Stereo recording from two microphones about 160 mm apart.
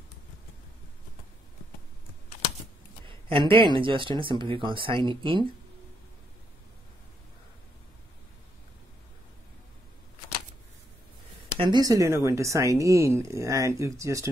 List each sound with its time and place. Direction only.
3.3 s speech: 35° right (ahead or behind)
11.5 s speech: 30° right (ahead or behind)